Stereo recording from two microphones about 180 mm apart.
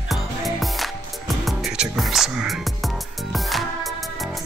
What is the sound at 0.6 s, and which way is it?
Music, centre (ahead or behind).